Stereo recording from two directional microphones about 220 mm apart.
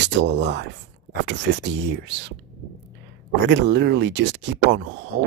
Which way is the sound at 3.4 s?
50° right (ahead or behind).